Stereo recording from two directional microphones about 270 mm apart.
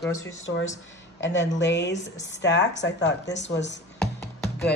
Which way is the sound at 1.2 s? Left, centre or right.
Left.